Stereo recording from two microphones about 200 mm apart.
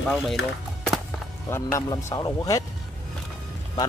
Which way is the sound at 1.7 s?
15° left (ahead or behind).